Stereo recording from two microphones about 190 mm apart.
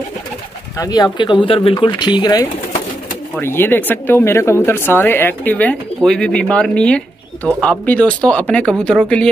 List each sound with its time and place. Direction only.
0.7 s speech: 20° left (ahead or behind)
3.3 s speech: 10° left (ahead or behind)